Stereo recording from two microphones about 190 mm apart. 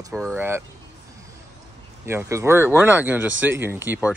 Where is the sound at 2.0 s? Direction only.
15° right (ahead or behind).